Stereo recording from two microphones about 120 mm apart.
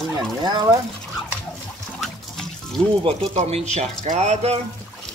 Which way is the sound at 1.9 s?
5° left (ahead or behind).